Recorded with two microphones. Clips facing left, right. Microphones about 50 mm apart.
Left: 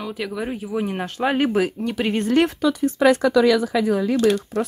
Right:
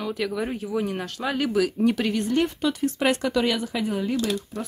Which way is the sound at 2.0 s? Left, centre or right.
Centre.